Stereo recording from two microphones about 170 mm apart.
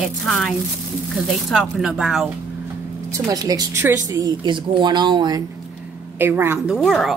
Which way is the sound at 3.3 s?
20° right (ahead or behind).